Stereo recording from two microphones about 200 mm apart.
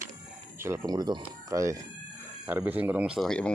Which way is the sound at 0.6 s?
15° right (ahead or behind).